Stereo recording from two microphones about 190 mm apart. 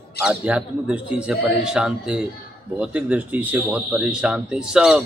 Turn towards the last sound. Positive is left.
turn(degrees=-5)  # may be behind; listen again after turning